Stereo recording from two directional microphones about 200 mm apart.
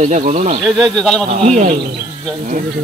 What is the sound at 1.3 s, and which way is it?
Speech, 35° right (ahead or behind).